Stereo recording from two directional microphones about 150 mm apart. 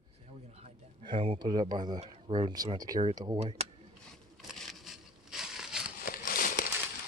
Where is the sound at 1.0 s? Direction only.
35° right (ahead or behind).